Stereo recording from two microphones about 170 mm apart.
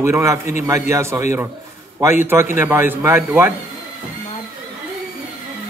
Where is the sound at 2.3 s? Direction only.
15° right (ahead or behind).